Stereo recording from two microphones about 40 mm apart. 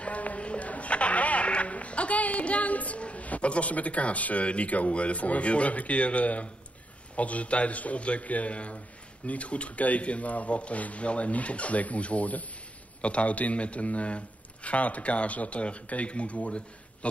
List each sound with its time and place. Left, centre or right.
0.0 s a man's voice: left